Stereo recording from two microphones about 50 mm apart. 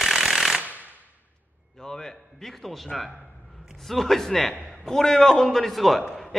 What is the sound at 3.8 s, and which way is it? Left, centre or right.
A man's voice, centre.